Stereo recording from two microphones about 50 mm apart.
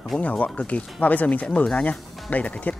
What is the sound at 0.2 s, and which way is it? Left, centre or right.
Speech, left.